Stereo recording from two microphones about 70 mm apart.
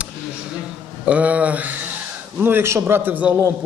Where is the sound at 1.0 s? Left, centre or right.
Centre.